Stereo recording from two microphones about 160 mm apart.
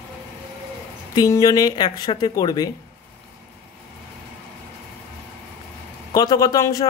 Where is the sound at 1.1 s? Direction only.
20° left (ahead or behind).